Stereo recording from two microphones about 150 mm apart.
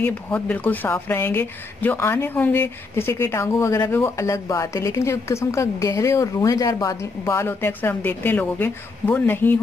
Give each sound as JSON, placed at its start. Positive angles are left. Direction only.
{"t": 0.0, "sound": "a woman's voice", "side_deg": 10}